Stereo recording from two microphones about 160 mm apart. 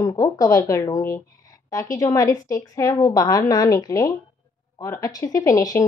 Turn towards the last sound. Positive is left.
turn(degrees=20)  # may be behind; listen again after turning